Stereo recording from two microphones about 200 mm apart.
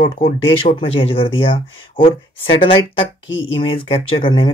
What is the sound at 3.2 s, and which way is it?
Speech, 70° left (ahead or behind).